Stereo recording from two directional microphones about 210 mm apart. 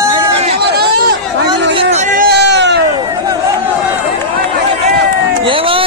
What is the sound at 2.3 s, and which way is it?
Cat, 55° right (ahead or behind).